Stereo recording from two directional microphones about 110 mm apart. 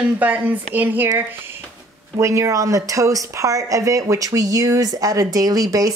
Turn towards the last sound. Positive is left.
turn(degrees=-35)  # may be behind; listen again after turning